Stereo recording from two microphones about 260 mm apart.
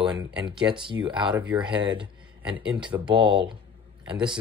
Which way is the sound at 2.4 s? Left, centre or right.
Centre.